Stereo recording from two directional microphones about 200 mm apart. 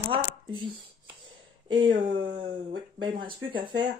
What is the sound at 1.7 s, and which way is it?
Speech, 25° right (ahead or behind).